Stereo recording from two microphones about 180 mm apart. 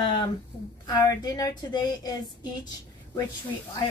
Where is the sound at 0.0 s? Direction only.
25° left (ahead or behind).